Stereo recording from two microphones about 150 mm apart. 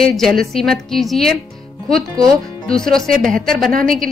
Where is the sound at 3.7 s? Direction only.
70° right (ahead or behind).